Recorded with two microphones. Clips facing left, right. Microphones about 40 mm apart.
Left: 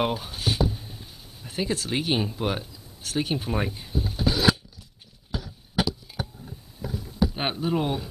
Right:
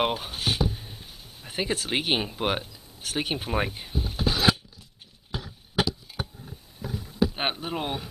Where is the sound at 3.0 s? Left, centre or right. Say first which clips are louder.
Left 2 dB; right.